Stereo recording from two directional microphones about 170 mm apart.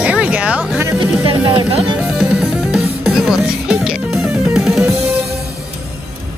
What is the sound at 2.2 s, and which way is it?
Music, 5° right (ahead or behind).